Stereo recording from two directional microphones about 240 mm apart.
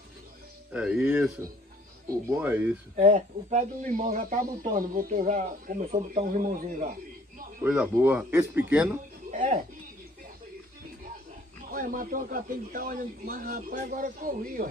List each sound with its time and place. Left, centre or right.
0.7 s speech: centre
3.0 s speech: right
7.6 s speech: centre
9.3 s speech: right
11.7 s speech: right